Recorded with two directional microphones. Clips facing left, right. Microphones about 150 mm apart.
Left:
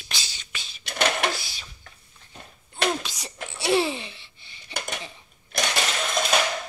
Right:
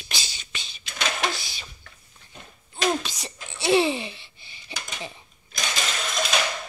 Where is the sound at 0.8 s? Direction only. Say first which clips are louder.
Left 3 dB; 60° left (ahead or behind).